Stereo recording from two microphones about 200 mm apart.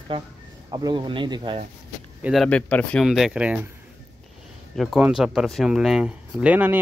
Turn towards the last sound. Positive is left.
turn(degrees=-10)  # may be behind; listen again after turning